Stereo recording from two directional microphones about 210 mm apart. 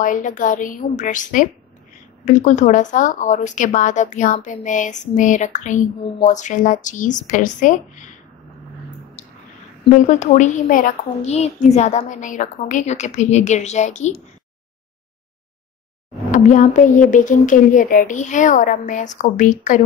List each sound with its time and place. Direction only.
0.0 s a woman's voice: 40° left (ahead or behind)
9.9 s a woman's voice: 35° left (ahead or behind)
16.3 s a woman's voice: 35° left (ahead or behind)